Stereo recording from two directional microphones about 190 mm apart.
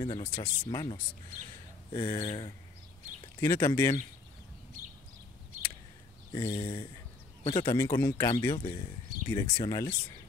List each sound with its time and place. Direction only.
0.0 s speech: 25° left (ahead or behind)
6.3 s speech: 25° left (ahead or behind)
7.7 s speech: 15° left (ahead or behind)